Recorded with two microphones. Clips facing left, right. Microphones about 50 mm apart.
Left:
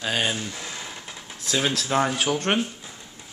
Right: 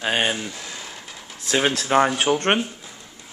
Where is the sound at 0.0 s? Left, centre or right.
Right.